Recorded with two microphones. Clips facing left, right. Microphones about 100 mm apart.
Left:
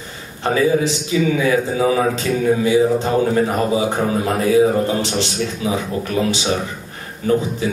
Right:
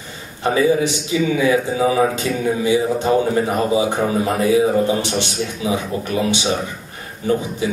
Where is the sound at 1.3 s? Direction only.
20° right (ahead or behind).